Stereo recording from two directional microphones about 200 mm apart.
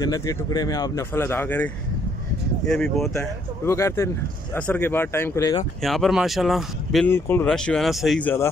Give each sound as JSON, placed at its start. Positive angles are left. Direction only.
{"t": 0.0, "sound": "speech", "side_deg": 20}
{"t": 5.8, "sound": "speech", "side_deg": 0}
{"t": 7.1, "sound": "speech", "side_deg": 10}